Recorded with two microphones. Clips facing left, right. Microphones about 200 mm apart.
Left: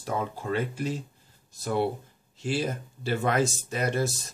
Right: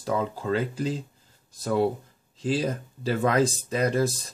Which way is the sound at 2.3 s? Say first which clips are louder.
Right 3 dB; 90° right.